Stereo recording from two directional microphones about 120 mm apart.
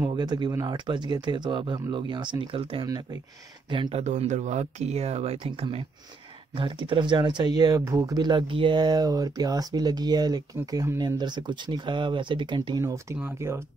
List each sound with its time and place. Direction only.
0.1 s speech: 35° right (ahead or behind)
3.9 s speech: 65° right (ahead or behind); by 13.7 s 20° right (ahead or behind)